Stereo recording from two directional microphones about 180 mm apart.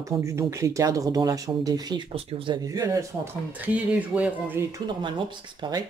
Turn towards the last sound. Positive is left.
turn(degrees=-20)  # may be behind; listen again after turning